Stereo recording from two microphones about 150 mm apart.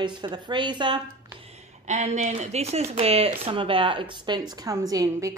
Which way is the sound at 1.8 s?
50° right (ahead or behind).